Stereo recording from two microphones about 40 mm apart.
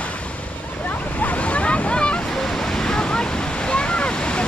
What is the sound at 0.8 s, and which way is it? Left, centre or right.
Waves, left.